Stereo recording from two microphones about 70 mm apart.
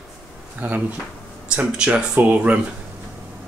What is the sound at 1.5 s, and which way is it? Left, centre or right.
Speech, centre.